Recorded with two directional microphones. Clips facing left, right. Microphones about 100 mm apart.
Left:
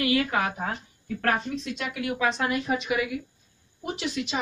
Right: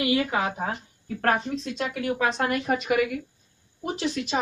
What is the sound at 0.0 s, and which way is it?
Speech, 25° right (ahead or behind).